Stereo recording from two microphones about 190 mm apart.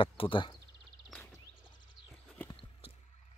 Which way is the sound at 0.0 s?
25° left (ahead or behind).